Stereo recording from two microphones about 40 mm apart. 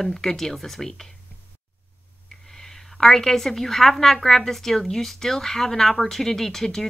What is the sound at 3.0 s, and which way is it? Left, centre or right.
Speech, centre.